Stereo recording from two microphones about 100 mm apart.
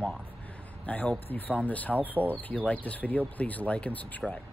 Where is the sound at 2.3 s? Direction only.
15° left (ahead or behind).